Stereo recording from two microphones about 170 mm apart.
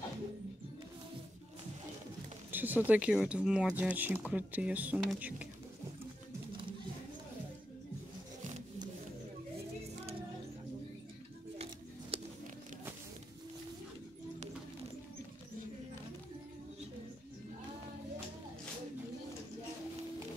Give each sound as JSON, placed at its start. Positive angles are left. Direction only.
{"t": 2.5, "sound": "speech", "side_deg": -10}
{"t": 11.5, "sound": "scissors", "side_deg": -35}